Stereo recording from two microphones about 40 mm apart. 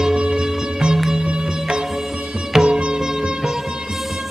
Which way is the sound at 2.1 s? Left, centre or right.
Centre.